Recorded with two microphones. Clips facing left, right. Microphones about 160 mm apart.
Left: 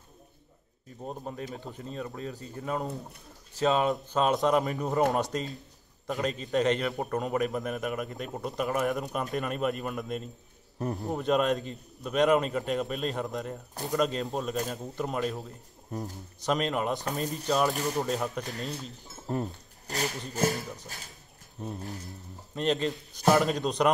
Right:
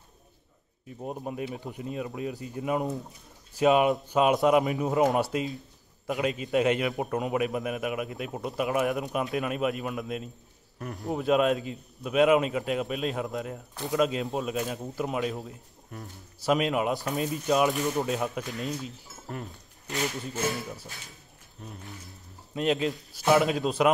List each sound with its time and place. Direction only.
1.0 s a man's voice: 10° right (ahead or behind)
10.8 s speech: 30° left (ahead or behind)
11.1 s a man's voice: 5° right (ahead or behind)
16.4 s a man's voice: 5° right (ahead or behind)
18.4 s speech: 40° left (ahead or behind)
22.5 s a man's voice: 5° right (ahead or behind)